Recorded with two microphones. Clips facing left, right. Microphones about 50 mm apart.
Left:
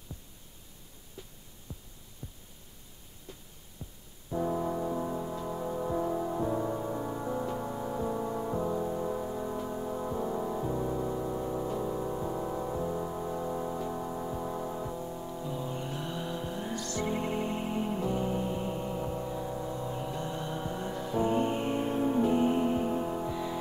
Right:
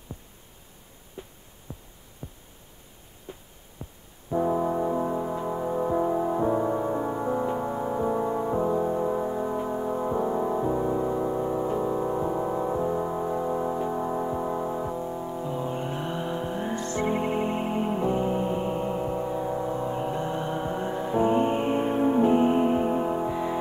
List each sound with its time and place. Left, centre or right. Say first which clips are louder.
1.2 s a sound: right 7 dB; right
1.7 s heart sounds: right 5 dB; right
2.2 s hum: right 5 dB; right
3.3 s heart sounds: right 7 dB; right
3.8 s music: right 5 dB; right
4.3 s music: right 6 dB; right